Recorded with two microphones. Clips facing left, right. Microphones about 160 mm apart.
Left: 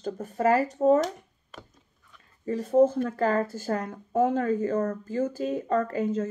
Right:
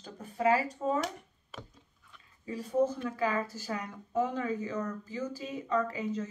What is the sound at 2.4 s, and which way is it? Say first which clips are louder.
Speech: left 8 dB; 50° left (ahead or behind).